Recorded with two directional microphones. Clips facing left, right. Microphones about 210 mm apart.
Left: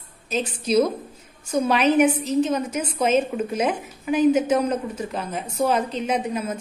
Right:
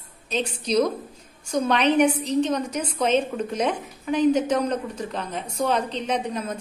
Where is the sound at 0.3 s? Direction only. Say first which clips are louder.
Left 2 dB; 5° left (ahead or behind).